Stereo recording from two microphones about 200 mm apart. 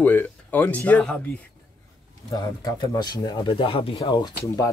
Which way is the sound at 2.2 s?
20° left (ahead or behind).